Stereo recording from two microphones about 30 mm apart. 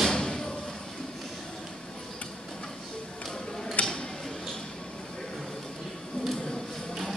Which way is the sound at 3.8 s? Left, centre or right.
Left.